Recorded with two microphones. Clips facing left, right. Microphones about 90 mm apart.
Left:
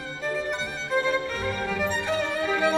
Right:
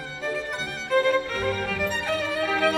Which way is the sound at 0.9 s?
5° left (ahead or behind).